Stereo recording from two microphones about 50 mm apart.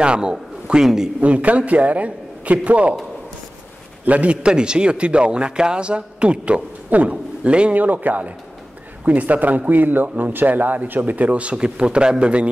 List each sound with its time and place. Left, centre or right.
0.0 s a man's voice: centre
1.2 s a man's voice: right
4.0 s a man's voice: right
7.8 s a man's voice: right